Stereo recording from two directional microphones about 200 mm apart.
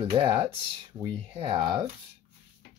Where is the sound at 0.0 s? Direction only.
25° right (ahead or behind).